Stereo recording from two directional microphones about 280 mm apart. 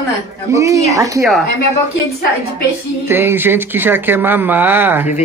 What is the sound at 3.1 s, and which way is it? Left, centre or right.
Speech, centre.